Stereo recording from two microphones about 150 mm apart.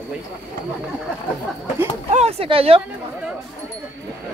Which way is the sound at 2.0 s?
45° right (ahead or behind).